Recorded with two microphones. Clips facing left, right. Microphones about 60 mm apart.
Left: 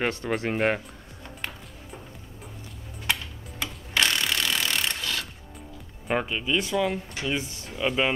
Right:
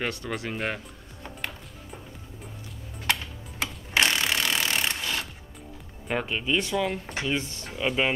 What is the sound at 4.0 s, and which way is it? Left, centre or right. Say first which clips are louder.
Rub: right 1 dB; centre.